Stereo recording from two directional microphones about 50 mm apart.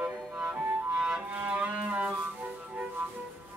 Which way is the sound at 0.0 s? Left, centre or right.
Right.